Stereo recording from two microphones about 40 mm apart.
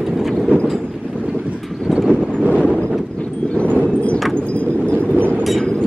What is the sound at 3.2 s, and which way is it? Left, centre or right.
Clip-clop, left.